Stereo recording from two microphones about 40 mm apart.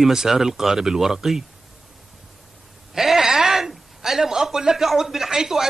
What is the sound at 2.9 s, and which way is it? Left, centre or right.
A man's voice, centre.